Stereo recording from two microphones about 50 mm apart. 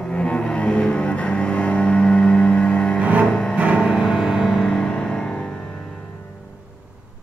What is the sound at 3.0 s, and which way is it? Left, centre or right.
Music, right.